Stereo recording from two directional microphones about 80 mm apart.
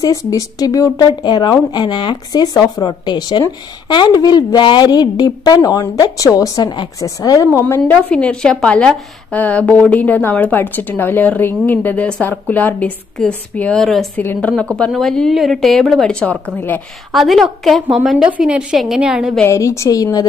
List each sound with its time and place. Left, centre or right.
0.0 s a woman's voice: left
1.0 s a woman's voice: left
7.9 s a woman's voice: centre
13.7 s a woman's voice: centre
14.1 s a woman's voice: left
14.6 s a woman's voice: centre
17.1 s a woman's voice: centre
19.4 s a woman's voice: left